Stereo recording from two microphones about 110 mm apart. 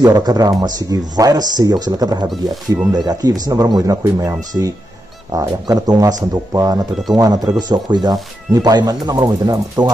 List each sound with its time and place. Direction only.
0.0 s speech: 35° right (ahead or behind)